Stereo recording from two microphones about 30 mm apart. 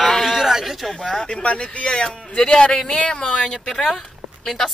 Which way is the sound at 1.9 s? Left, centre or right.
Left.